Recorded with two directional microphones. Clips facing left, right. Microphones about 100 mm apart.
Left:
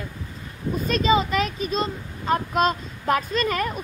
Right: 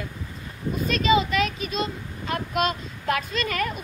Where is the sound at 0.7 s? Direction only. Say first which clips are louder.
Left 1 dB; 35° left (ahead or behind).